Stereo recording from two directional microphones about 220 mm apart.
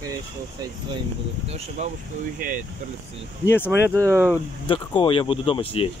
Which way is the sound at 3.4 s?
10° left (ahead or behind).